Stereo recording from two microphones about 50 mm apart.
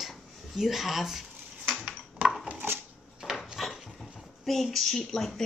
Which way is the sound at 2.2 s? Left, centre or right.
Right.